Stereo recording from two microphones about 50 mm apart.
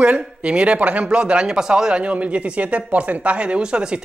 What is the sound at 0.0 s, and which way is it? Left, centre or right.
Speech, right.